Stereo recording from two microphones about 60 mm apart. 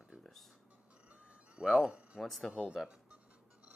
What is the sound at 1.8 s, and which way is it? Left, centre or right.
Speech, centre.